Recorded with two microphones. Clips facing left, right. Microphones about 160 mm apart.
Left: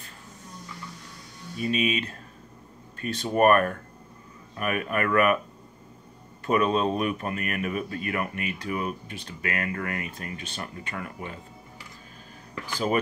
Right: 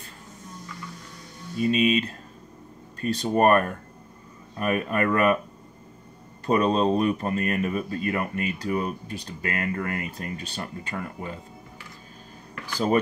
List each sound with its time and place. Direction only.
1.6 s speech: 35° right (ahead or behind)
6.4 s speech: 35° right (ahead or behind)
12.7 s speech: 35° right (ahead or behind)